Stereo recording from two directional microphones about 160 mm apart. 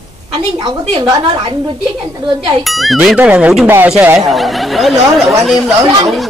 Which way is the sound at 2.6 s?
Centre (ahead or behind).